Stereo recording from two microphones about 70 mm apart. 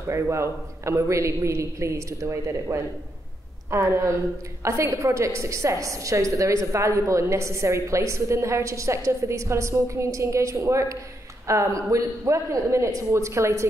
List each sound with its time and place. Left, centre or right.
0.1 s a woman's voice: right